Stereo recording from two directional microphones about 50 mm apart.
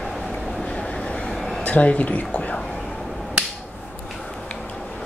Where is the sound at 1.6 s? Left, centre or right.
Left.